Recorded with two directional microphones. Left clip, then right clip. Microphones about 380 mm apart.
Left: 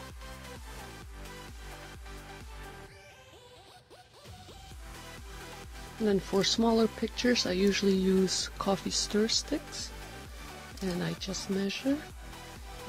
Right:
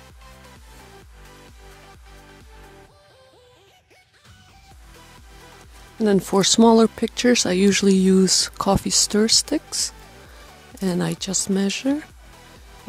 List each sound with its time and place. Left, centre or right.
6.0 s speech: right
11.0 s speech: right